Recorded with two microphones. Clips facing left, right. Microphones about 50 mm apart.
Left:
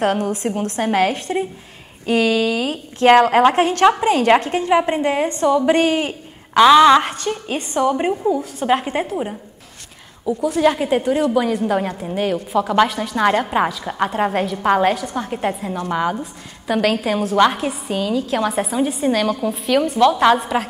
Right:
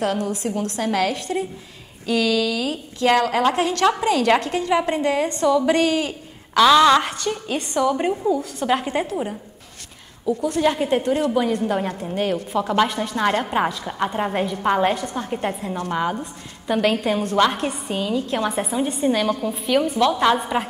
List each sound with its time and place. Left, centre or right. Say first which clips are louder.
0.0 s a woman's voice: left 4 dB; left
6.6 s a woman's voice: left 4 dB; centre
14.9 s a woman's voice: left 3 dB; centre
20.3 s a woman's voice: left 2 dB; centre